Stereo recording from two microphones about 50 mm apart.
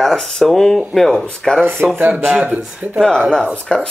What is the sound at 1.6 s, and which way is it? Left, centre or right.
Speech, right.